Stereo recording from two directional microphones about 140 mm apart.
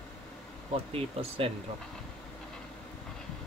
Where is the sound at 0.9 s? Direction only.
45° right (ahead or behind).